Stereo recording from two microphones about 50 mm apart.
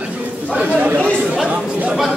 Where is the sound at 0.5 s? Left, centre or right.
Right.